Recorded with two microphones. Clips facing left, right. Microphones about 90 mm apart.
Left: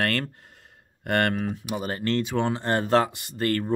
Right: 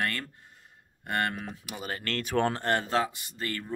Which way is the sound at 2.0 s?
20° left (ahead or behind).